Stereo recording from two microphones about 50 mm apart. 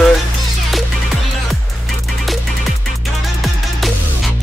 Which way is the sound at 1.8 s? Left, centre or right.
Centre.